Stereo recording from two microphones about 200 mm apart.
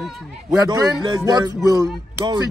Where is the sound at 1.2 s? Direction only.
20° right (ahead or behind).